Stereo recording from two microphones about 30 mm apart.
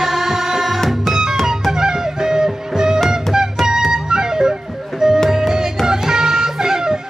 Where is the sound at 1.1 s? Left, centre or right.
Right.